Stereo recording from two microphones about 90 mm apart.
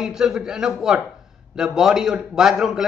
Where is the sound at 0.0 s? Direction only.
5° right (ahead or behind).